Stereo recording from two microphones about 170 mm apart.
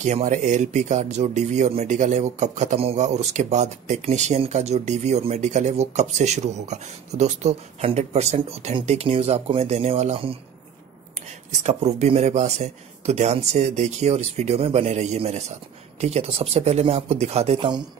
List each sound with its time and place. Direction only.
0.0 s speech: 45° right (ahead or behind)
11.6 s speech: 40° right (ahead or behind)